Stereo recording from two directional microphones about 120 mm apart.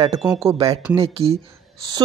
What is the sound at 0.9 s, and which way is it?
Speech, 50° right (ahead or behind).